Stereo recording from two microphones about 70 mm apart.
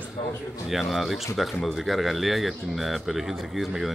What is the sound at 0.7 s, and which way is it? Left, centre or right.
Speech, centre.